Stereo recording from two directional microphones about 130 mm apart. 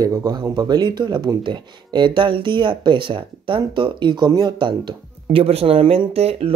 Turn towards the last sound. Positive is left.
turn(degrees=-50)  # may be behind; listen again after turning